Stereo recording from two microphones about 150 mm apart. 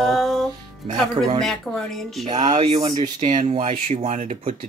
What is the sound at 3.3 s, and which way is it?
Speech, 55° right (ahead or behind).